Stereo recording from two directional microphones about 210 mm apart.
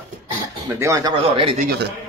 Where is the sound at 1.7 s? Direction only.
55° right (ahead or behind).